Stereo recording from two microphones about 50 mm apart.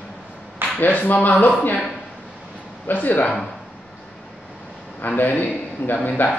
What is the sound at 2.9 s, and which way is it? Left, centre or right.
Speech, left.